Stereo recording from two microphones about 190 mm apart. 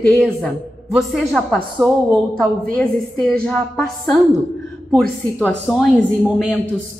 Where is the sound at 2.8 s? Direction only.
5° left (ahead or behind).